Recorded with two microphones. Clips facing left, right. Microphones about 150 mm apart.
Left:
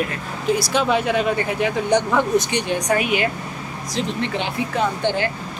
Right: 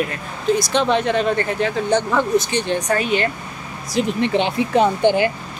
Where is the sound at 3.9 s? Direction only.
10° right (ahead or behind).